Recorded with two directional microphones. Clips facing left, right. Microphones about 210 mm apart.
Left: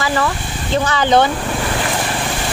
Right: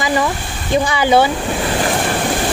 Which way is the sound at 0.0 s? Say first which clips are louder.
Right 1 dB; 15° right (ahead or behind).